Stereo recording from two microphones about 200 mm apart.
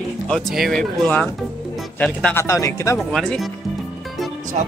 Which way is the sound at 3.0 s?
Centre (ahead or behind).